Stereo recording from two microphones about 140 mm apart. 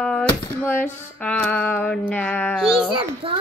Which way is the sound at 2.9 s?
40° right (ahead or behind).